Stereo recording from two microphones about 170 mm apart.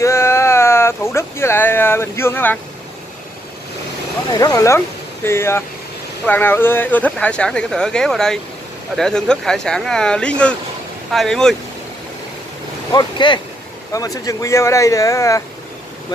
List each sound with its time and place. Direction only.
0.0 s a sound: 15° left (ahead or behind)
4.3 s speech: 20° left (ahead or behind); by 11.5 s 5° left (ahead or behind)
12.9 s speech: 25° left (ahead or behind)